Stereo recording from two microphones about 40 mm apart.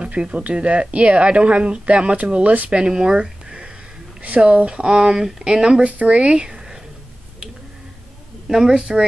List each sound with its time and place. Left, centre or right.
0.0 s speech: right
4.2 s speech: right; by 5.9 s centre
5.9 s speech: right; by 6.8 s centre
8.5 s a woman's voice: centre
8.7 s speech: right